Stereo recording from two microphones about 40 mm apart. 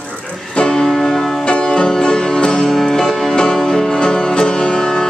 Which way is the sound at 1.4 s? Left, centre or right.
Left.